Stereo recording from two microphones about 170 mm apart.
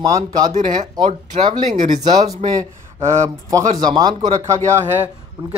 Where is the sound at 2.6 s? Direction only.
20° right (ahead or behind).